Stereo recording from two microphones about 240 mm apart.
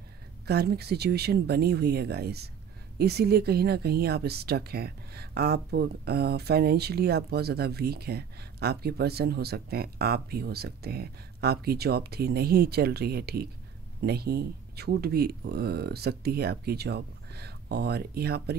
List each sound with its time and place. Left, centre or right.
0.5 s speech: right